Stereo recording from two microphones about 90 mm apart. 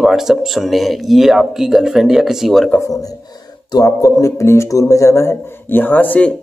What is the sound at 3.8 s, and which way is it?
A man's voice, 35° left (ahead or behind).